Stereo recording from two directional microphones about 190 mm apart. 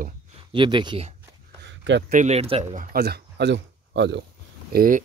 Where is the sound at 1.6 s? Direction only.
65° right (ahead or behind).